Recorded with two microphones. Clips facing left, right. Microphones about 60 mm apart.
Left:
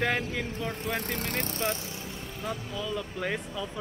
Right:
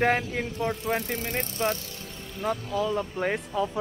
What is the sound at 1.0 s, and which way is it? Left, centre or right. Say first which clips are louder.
Speech: right 2 dB; left.